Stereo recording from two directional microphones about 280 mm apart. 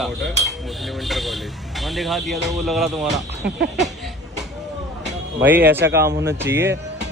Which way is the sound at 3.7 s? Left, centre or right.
Centre.